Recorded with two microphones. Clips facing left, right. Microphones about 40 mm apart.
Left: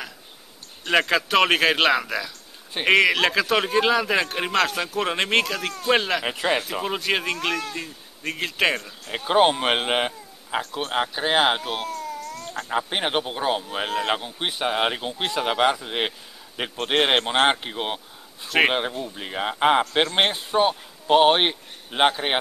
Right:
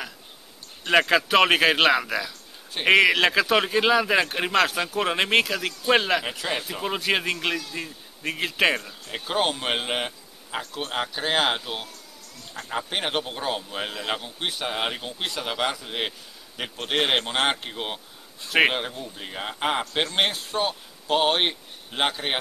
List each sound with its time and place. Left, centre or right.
0.8 s speech: centre
6.2 s speech: centre
6.7 s speech: centre
9.1 s speech: centre
11.9 s a sound: left
12.5 s speech: centre